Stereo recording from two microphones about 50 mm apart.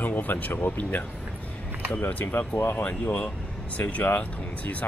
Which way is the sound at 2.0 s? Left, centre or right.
Left.